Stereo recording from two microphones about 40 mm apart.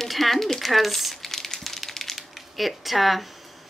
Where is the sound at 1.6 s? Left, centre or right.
Centre.